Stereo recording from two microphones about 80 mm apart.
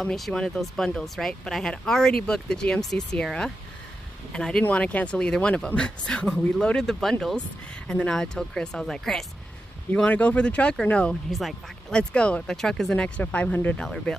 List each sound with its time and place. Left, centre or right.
0.0 s speech: centre
9.9 s speech: centre
13.2 s speech: left
13.8 s speech: centre